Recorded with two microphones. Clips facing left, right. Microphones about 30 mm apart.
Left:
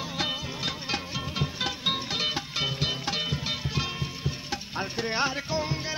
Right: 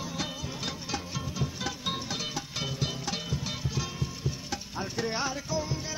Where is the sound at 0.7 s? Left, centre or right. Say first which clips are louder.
Left 5 dB; left.